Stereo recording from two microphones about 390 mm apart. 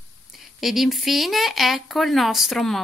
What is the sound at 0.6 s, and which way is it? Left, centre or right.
Speech, centre.